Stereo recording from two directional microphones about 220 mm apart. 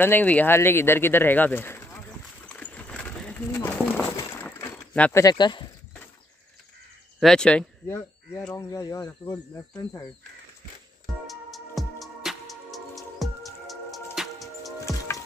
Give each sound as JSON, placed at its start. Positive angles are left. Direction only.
{"t": 0.0, "sound": "speech", "side_deg": 10}
{"t": 2.5, "sound": "a sound", "side_deg": 5}
{"t": 5.2, "sound": "speech", "side_deg": 20}
{"t": 7.2, "sound": "speech", "side_deg": 5}
{"t": 11.2, "sound": "music", "side_deg": 0}